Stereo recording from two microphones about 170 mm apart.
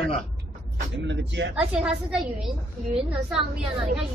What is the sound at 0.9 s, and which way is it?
Speech, 90° right.